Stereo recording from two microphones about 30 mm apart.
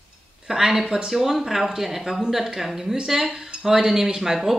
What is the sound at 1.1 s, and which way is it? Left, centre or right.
Speech, centre.